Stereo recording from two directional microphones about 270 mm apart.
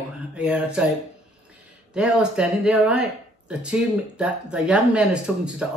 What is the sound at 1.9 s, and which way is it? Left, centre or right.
Speech, centre.